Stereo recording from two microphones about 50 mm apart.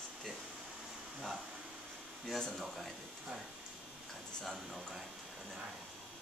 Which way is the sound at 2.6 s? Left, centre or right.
Centre.